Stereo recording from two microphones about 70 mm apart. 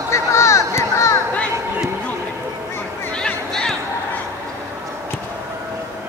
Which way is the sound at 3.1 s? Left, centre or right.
Centre.